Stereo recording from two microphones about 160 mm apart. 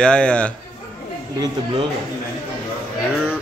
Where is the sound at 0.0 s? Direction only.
5° left (ahead or behind).